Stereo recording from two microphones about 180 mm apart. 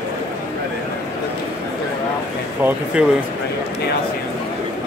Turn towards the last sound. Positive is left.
turn(degrees=-10)  # may be behind; listen again after turning